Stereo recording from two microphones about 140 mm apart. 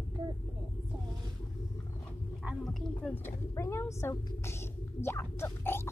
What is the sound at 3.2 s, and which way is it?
Speech, 20° left (ahead or behind).